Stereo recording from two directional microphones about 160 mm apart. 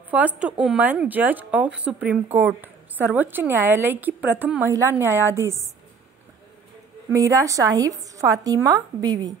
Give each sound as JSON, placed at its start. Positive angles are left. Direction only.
{"t": 0.4, "sound": "a woman's voice", "side_deg": -5}
{"t": 7.1, "sound": "speech", "side_deg": -20}